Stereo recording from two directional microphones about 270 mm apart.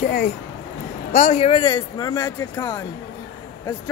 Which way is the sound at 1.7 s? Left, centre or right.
Centre.